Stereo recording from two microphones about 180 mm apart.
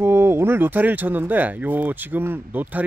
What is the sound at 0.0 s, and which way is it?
Speech, 15° right (ahead or behind).